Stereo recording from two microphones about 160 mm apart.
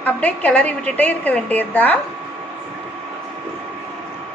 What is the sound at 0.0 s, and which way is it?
A woman's voice, 10° left (ahead or behind).